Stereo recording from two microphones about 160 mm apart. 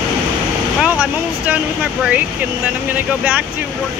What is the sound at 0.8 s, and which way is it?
Speech, 10° right (ahead or behind).